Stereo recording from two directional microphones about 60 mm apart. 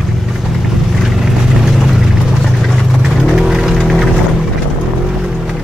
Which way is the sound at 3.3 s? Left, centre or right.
Centre.